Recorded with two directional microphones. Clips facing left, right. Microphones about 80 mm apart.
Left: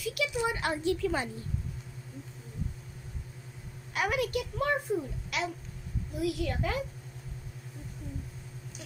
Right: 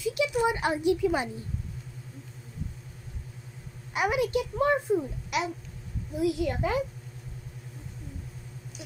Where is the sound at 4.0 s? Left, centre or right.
Right.